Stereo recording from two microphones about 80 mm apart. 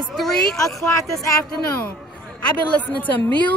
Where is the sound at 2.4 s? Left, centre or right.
Centre.